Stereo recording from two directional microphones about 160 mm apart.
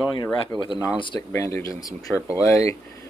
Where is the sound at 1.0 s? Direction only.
30° left (ahead or behind).